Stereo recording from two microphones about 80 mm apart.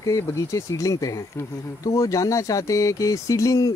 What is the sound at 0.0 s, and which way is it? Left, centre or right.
Speech, left.